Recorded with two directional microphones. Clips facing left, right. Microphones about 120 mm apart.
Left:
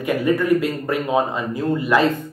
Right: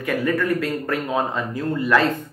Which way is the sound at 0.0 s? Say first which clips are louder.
Left 3 dB; 15° left (ahead or behind).